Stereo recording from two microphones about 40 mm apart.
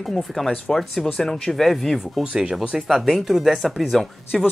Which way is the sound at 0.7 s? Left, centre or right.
Centre.